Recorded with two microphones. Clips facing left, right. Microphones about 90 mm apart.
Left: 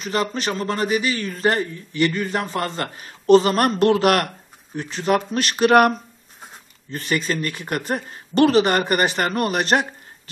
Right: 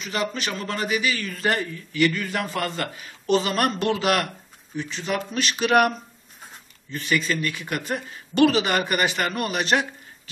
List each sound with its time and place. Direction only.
0.0 s a man's voice: 40° left (ahead or behind)